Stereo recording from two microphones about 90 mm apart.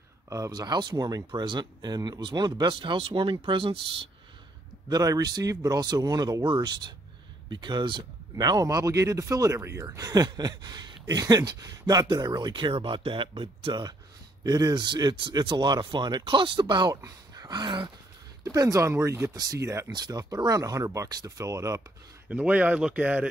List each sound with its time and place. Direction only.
0.5 s speech: 50° right (ahead or behind); by 3.8 s 75° right (ahead or behind)
4.8 s speech: 45° right (ahead or behind); by 8.0 s 60° right (ahead or behind)
8.4 s speech: 40° right (ahead or behind); by 13.8 s 65° right (ahead or behind)
14.4 s speech: 45° right (ahead or behind)
16.9 s speech: 40° right (ahead or behind)
18.4 s speech: 40° right (ahead or behind)
19.3 s speech: 45° right (ahead or behind)
19.9 s speech: 45° right (ahead or behind)
22.3 s speech: 15° right (ahead or behind)